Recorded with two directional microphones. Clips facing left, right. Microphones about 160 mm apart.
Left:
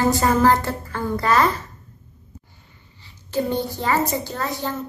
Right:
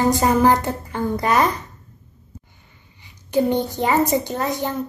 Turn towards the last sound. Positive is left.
turn(degrees=-20)  # may be behind; listen again after turning